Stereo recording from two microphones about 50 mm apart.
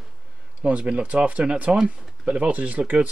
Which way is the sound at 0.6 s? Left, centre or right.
Right.